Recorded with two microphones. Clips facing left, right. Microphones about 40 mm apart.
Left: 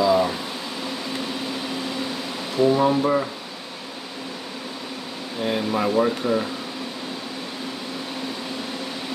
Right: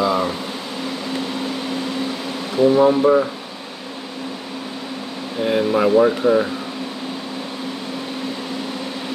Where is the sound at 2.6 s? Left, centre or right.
Centre.